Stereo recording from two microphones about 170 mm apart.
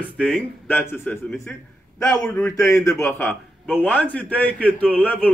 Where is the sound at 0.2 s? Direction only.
5° left (ahead or behind).